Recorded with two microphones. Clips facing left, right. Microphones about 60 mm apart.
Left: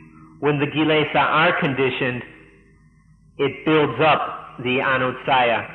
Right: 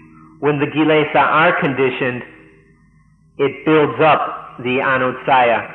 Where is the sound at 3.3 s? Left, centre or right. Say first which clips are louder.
Right 4 dB; centre.